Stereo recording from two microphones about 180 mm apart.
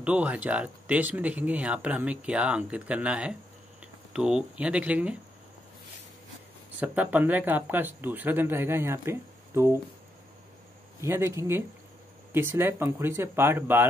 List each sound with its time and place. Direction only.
0.0 s speech: 10° right (ahead or behind)
6.8 s speech: 10° right (ahead or behind)
11.0 s speech: 15° right (ahead or behind)